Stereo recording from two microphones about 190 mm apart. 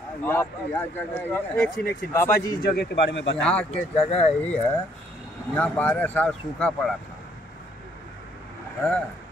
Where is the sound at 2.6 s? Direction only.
65° left (ahead or behind).